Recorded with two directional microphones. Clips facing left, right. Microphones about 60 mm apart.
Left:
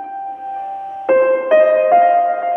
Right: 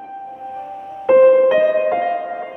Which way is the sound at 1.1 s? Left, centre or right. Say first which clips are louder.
Right 2 dB; left.